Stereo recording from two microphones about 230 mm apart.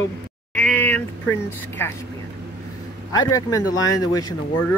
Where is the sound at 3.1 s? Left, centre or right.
Centre.